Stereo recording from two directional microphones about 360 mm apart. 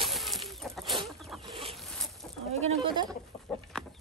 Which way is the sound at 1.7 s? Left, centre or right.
Centre.